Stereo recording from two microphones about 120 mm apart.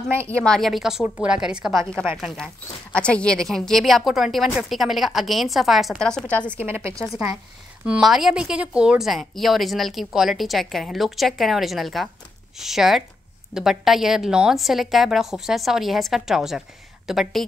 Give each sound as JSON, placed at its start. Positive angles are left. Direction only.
{"t": 0.1, "sound": "a woman's voice", "side_deg": -20}
{"t": 0.4, "sound": "speech", "side_deg": 5}
{"t": 6.5, "sound": "a woman's voice", "side_deg": -20}
{"t": 7.8, "sound": "speech", "side_deg": -5}